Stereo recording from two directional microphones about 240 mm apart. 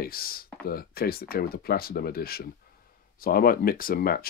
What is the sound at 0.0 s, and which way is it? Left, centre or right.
Speech, left.